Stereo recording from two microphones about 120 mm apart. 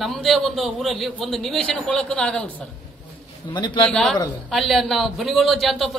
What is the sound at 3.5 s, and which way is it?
Speech, 35° left (ahead or behind).